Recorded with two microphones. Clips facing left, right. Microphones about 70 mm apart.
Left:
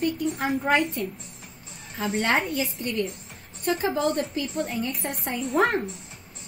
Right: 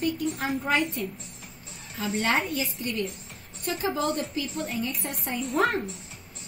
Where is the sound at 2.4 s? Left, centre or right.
Centre.